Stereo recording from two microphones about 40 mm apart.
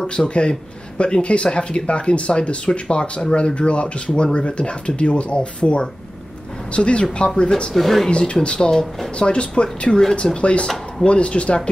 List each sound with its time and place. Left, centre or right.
0.0 s speech: left
7.7 s speech: centre
8.1 s speech: left